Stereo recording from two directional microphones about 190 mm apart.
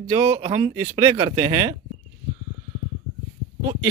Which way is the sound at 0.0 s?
10° right (ahead or behind).